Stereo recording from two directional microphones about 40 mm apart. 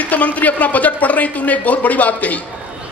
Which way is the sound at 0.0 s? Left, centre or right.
Left.